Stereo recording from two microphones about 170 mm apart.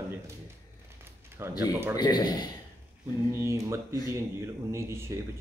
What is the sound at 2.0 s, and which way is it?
Speech, 20° left (ahead or behind).